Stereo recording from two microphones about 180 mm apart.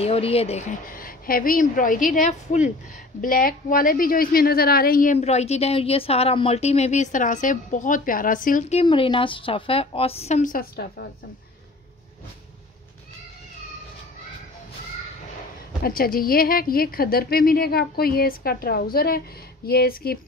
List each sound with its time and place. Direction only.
0.0 s a woman's voice: 35° left (ahead or behind)
8.8 s a woman's voice: 30° left (ahead or behind); by 11.1 s 60° left (ahead or behind)
15.8 s a woman's voice: 55° left (ahead or behind)